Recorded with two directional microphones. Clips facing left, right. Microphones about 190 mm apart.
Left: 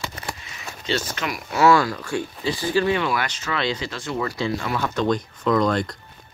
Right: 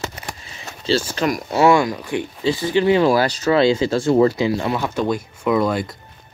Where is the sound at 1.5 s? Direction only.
20° right (ahead or behind).